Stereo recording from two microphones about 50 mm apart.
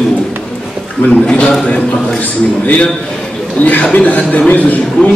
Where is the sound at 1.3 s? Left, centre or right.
Centre.